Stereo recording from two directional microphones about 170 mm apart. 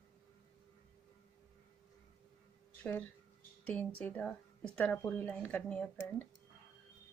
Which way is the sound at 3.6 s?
5° left (ahead or behind).